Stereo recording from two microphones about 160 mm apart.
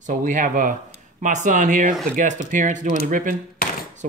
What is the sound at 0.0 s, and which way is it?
Speech, 55° right (ahead or behind).